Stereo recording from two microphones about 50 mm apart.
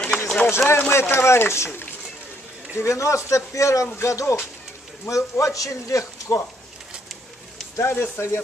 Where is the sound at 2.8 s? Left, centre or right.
Left.